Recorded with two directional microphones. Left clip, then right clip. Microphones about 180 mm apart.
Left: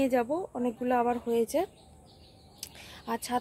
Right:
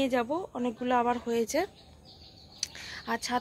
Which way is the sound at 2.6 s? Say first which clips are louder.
Right 8 dB; 5° left (ahead or behind).